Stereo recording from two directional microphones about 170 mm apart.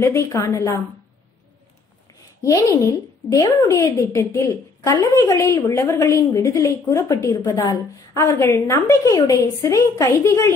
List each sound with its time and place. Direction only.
0.0 s a woman's voice: 20° left (ahead or behind)
2.4 s a woman's voice: 20° left (ahead or behind)